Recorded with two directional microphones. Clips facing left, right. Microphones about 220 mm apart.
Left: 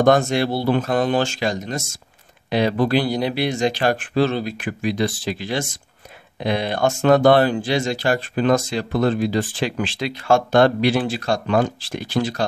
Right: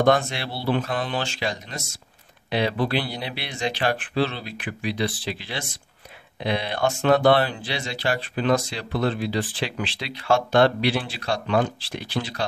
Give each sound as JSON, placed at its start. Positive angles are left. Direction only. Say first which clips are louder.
{"t": 0.0, "sound": "speech", "louder": "left 5 dB", "side_deg": 45}